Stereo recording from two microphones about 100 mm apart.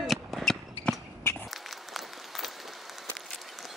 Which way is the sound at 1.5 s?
Centre (ahead or behind).